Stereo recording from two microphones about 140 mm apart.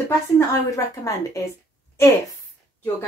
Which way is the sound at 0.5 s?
25° left (ahead or behind).